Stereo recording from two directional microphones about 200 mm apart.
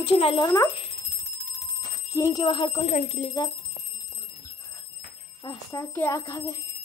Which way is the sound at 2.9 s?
35° left (ahead or behind).